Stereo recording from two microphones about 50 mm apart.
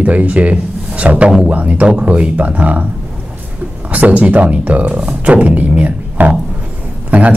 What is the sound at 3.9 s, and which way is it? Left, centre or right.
A man's voice, right.